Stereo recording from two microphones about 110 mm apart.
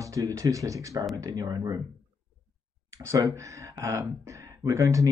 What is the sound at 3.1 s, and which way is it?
Speech, 30° right (ahead or behind).